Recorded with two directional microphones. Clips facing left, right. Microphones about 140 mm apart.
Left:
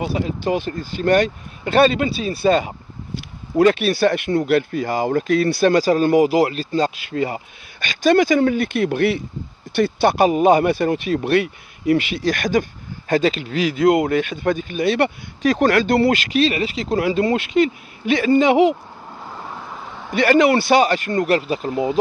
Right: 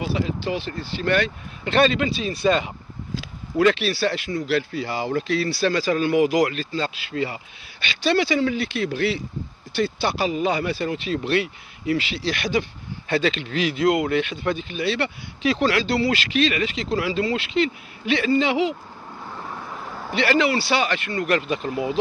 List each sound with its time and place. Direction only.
0.0 s speech: 45° left (ahead or behind)
6.7 s speech: 45° left (ahead or behind)
19.3 s vehicle: 5° left (ahead or behind)
20.2 s speech: 45° left (ahead or behind)